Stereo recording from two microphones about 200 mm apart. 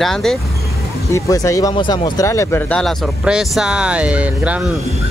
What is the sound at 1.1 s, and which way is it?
Speech, 15° left (ahead or behind).